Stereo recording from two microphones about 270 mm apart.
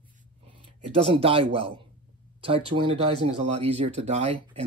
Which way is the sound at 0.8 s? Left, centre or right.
Right.